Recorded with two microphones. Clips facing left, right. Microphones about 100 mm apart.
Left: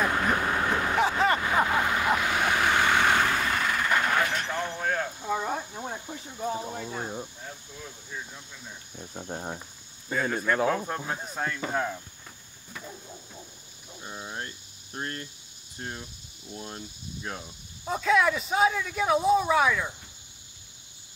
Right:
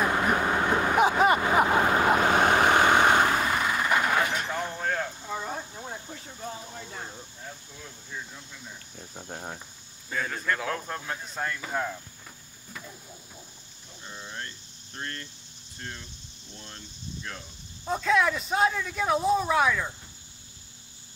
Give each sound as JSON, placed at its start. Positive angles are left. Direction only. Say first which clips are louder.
{"t": 0.0, "sound": "vehicle", "louder": "right 1 dB", "side_deg": -15}
{"t": 2.8, "sound": "vehicle", "louder": "right 3 dB", "side_deg": -25}
{"t": 5.2, "sound": "a sound", "louder": "left 4 dB", "side_deg": 15}
{"t": 7.4, "sound": "cricket", "louder": "left 1 dB", "side_deg": 5}
{"t": 10.1, "sound": "speech", "louder": "left 4 dB", "side_deg": 10}
{"t": 14.0, "sound": "cricket", "louder": "left 2 dB", "side_deg": 15}
{"t": 15.8, "sound": "speech", "louder": "left 3 dB", "side_deg": 15}
{"t": 17.8, "sound": "speech", "louder": "left 1 dB", "side_deg": 0}